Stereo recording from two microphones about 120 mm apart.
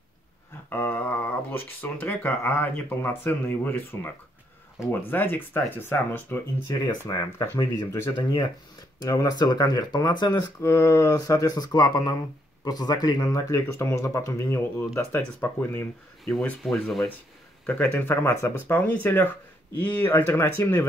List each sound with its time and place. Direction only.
0.7 s speech: 15° left (ahead or behind)
4.8 s speech: 5° right (ahead or behind)
5.1 s speech: 15° left (ahead or behind)
6.9 s speech: 30° left (ahead or behind)
8.2 s speech: 40° left (ahead or behind)
10.6 s speech: 25° left (ahead or behind)
16.3 s speech: 5° left (ahead or behind)